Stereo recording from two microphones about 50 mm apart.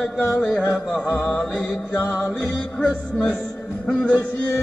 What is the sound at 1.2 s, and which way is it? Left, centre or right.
Music, left.